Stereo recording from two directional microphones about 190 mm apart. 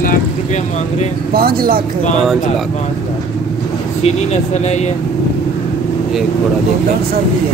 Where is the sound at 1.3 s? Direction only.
50° right (ahead or behind).